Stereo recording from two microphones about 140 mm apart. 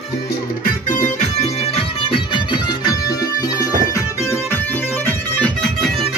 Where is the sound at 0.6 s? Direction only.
70° left (ahead or behind); by 3.7 s 25° left (ahead or behind).